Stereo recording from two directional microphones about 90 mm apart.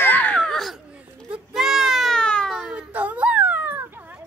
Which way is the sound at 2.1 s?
10° left (ahead or behind).